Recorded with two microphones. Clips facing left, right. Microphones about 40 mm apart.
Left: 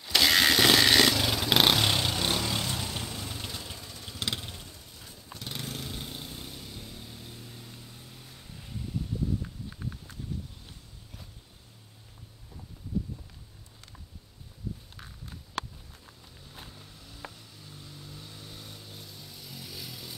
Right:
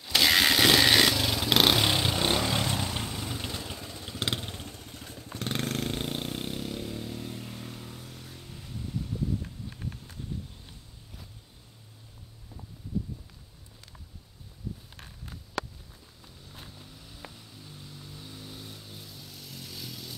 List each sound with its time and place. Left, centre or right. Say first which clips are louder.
0.0 s a sound: even; centre
2.1 s vehicle: right 3 dB; right
16.5 s vehicle: even; centre